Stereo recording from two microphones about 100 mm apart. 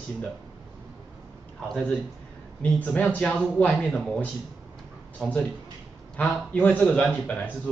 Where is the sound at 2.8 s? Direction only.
15° left (ahead or behind).